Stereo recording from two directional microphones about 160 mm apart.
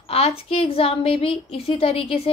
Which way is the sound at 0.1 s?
40° left (ahead or behind).